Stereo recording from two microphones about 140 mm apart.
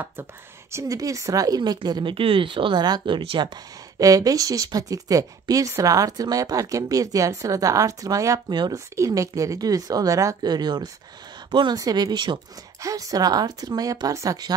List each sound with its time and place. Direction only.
0.0 s speech: 20° right (ahead or behind); by 3.5 s 40° right (ahead or behind)
4.0 s speech: 25° right (ahead or behind)